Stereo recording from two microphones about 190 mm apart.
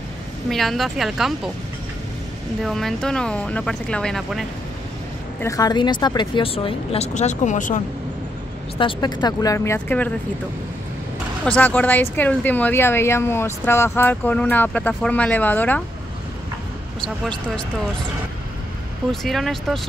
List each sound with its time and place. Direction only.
0.5 s speech: centre (ahead or behind)
2.6 s speech: centre (ahead or behind)
5.4 s speech: 20° left (ahead or behind); by 7.8 s 40° left (ahead or behind)
8.7 s speech: 25° left (ahead or behind); by 10.1 s 10° left (ahead or behind)
11.4 s a woman's voice: 5° left (ahead or behind)
17.0 s speech: 5° left (ahead or behind)
19.2 s speech: centre (ahead or behind)